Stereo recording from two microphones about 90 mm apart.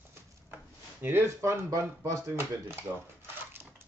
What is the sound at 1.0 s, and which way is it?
Speech, 30° right (ahead or behind).